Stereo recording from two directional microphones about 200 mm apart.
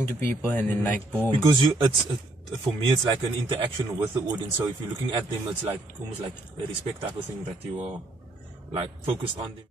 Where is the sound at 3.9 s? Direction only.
20° right (ahead or behind).